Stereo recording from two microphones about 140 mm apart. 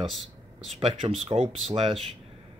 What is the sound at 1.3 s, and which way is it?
Speech, 35° right (ahead or behind).